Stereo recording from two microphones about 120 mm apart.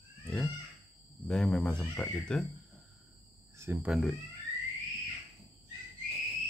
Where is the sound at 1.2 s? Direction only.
10° left (ahead or behind).